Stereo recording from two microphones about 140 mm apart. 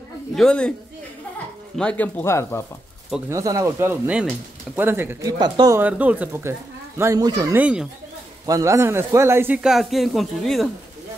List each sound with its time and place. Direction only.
0.4 s speech: 5° left (ahead or behind)
1.8 s speech: 10° left (ahead or behind)
3.3 s speech: 25° right (ahead or behind)
5.4 s speech: 30° right (ahead or behind)
5.8 s speech: 10° right (ahead or behind)
7.0 s speech: 25° right (ahead or behind)
7.5 s speech: 10° right (ahead or behind)
8.5 s speech: 20° right (ahead or behind)
9.6 s speech: centre (ahead or behind)